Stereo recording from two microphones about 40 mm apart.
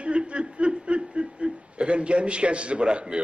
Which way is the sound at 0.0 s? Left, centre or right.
Right.